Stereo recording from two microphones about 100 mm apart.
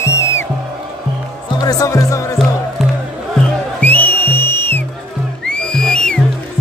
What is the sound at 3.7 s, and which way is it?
Music, 20° left (ahead or behind).